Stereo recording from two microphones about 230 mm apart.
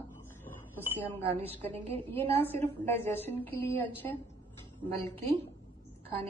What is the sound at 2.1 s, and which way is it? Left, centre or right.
Speech, right.